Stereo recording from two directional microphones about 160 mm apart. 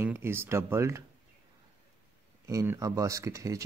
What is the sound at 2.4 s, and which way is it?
Speech, 15° right (ahead or behind).